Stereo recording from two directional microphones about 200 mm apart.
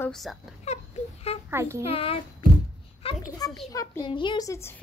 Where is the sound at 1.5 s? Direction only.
15° right (ahead or behind).